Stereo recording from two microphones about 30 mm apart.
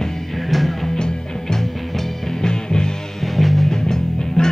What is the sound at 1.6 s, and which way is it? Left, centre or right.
Music, centre.